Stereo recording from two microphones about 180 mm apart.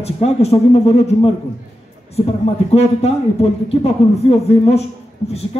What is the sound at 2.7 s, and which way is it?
A man's voice, 35° left (ahead or behind).